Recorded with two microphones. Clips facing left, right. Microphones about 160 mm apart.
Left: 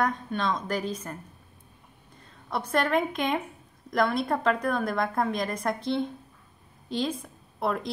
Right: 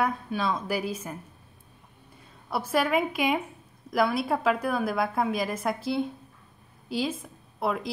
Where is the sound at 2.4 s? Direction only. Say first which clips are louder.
Right 1 dB; 5° right (ahead or behind).